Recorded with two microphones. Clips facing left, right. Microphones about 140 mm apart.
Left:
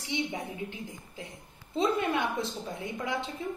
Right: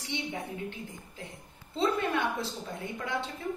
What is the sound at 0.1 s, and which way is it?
Speech, 15° left (ahead or behind).